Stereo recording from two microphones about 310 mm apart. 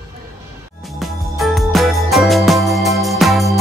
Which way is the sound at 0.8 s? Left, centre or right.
Centre.